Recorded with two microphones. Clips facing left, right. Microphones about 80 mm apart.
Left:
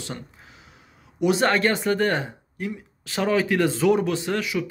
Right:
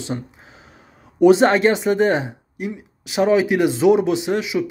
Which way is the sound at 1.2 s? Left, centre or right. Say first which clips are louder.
Right 8 dB; right.